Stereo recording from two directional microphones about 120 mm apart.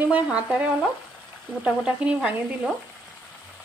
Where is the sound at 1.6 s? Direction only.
10° right (ahead or behind).